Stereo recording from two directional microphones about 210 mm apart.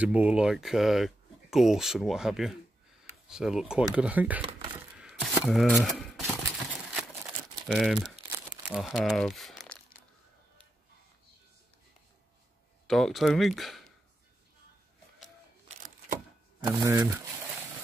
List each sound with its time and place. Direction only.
0.0 s speech: 5° right (ahead or behind)
4.9 s a sound: centre (ahead or behind)
7.6 s crumpling: centre (ahead or behind)
12.8 s speech: centre (ahead or behind)
16.7 s speech: 15° right (ahead or behind)